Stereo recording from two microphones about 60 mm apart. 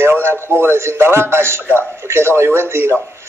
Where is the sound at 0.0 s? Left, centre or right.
Right.